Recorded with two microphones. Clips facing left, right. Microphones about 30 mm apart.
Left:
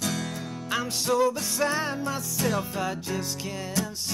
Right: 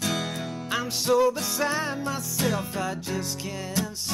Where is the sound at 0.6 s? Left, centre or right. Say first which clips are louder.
Right 1 dB; centre.